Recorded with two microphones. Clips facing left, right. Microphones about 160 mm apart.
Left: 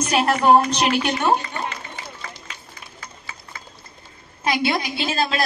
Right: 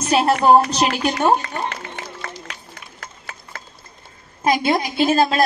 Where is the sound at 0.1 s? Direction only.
30° right (ahead or behind).